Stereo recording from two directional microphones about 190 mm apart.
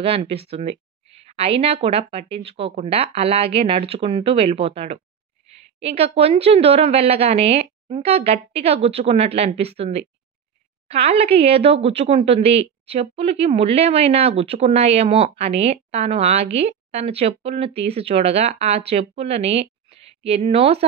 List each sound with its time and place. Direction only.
0.0 s speech: 30° right (ahead or behind)